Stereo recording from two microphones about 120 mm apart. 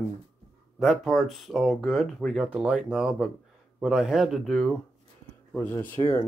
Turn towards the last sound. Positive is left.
turn(degrees=20)  # may be behind; listen again after turning